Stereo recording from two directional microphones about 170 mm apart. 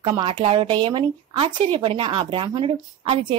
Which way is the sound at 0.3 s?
35° right (ahead or behind).